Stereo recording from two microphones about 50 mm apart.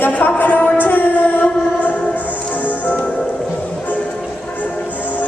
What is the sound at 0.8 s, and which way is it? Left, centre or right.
Music, left.